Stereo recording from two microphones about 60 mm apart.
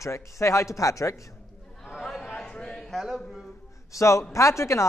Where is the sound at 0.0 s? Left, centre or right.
Left.